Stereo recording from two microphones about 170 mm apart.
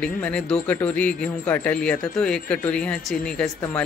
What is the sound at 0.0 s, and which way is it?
A woman's voice, 5° left (ahead or behind).